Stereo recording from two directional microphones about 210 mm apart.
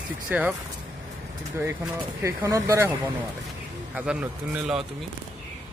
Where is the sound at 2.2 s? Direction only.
15° right (ahead or behind).